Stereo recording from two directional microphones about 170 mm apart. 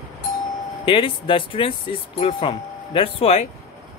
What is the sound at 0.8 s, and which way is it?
Speech, 30° left (ahead or behind).